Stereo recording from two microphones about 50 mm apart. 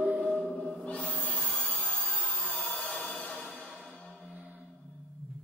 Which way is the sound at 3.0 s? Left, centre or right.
Left.